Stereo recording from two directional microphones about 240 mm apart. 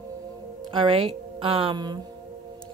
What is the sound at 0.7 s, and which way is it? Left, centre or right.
Speech, right.